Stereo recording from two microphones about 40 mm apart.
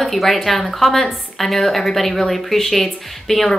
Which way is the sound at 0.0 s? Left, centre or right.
Centre.